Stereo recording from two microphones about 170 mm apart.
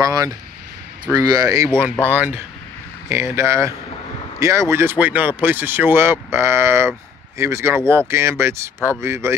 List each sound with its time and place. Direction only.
0.0 s speech: 20° right (ahead or behind)